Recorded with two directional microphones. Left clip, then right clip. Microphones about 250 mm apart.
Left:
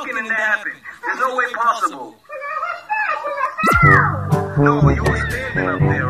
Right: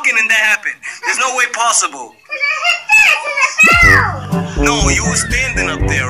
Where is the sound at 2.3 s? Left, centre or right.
Right.